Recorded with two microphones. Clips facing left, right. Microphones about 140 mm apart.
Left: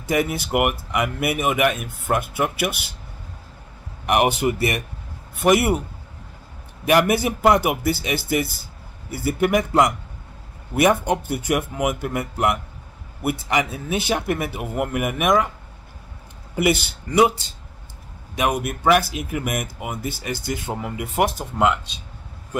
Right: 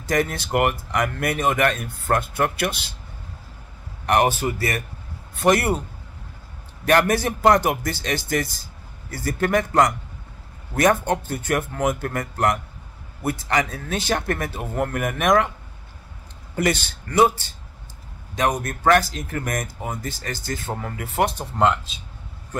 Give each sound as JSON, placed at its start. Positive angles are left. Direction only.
{"t": 0.1, "sound": "speech", "side_deg": 10}
{"t": 4.0, "sound": "speech", "side_deg": 10}
{"t": 5.4, "sound": "speech", "side_deg": 10}
{"t": 6.8, "sound": "speech", "side_deg": 10}
{"t": 16.5, "sound": "speech", "side_deg": 10}
{"t": 18.3, "sound": "speech", "side_deg": 10}
{"t": 21.4, "sound": "speech", "side_deg": 5}